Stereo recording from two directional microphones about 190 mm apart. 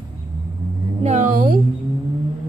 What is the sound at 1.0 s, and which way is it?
Speech, 40° right (ahead or behind).